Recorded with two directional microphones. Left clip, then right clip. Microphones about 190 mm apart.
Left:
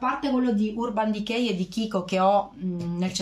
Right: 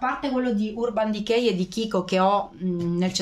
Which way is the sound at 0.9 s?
35° right (ahead or behind).